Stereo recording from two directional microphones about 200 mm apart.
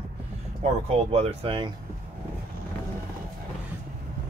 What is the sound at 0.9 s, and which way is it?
Speech, 30° right (ahead or behind).